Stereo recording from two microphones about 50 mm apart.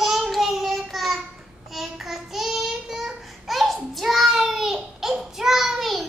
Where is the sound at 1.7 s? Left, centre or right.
Centre.